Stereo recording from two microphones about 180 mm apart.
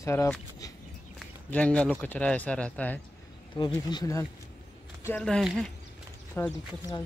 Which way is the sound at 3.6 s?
25° left (ahead or behind).